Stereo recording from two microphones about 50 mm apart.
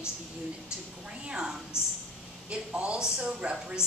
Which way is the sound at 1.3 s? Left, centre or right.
Centre.